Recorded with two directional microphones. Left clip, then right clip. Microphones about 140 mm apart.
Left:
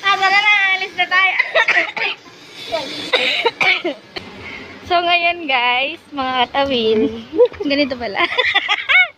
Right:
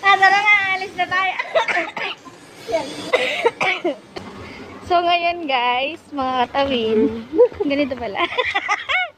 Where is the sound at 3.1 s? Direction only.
10° right (ahead or behind).